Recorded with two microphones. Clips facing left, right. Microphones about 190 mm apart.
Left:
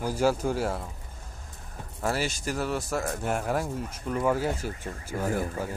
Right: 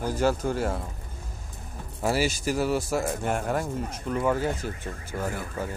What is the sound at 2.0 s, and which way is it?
Speech, 5° right (ahead or behind).